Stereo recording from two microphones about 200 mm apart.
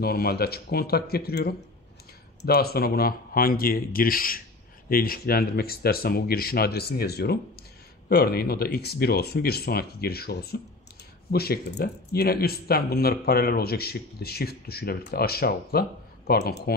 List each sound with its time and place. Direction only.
0.0 s speech: 50° left (ahead or behind)